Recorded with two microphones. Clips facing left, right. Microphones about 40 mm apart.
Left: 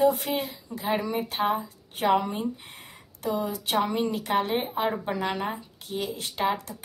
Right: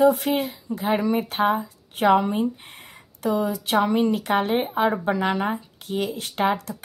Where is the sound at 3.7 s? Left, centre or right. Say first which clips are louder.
Right 5 dB; right.